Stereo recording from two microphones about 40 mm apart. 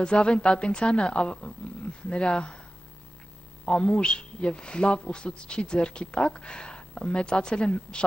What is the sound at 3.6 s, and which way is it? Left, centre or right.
Speech, left.